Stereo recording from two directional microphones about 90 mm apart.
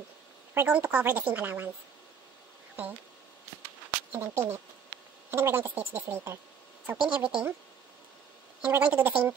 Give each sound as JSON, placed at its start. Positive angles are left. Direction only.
{"t": 0.7, "sound": "speech", "side_deg": -15}
{"t": 4.1, "sound": "speech", "side_deg": -25}
{"t": 7.0, "sound": "a woman's voice", "side_deg": -10}
{"t": 8.6, "sound": "a woman's voice", "side_deg": -20}